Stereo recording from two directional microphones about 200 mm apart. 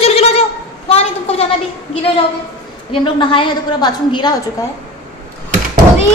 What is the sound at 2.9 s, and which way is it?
A woman's voice, 25° left (ahead or behind).